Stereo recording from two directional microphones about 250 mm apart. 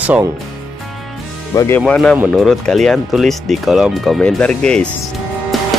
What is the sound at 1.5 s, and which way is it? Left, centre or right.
Speech, centre.